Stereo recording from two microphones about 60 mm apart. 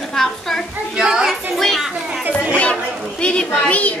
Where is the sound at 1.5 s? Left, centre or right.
Centre.